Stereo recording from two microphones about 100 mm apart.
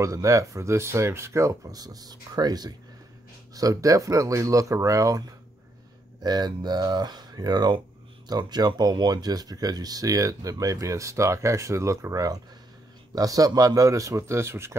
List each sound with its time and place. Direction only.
0.0 s speech: 35° right (ahead or behind)
6.2 s speech: 45° right (ahead or behind); by 14.8 s 25° right (ahead or behind)